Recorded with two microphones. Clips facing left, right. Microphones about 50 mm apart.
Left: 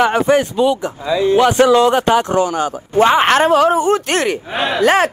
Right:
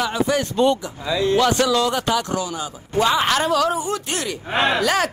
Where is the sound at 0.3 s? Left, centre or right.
Left.